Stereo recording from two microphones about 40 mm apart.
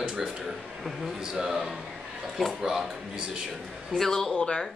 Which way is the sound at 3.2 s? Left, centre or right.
Right.